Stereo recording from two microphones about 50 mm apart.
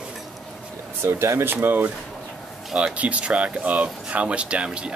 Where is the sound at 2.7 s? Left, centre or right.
Right.